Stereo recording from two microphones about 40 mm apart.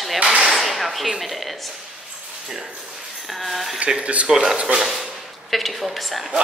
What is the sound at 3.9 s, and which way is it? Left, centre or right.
Speech, right.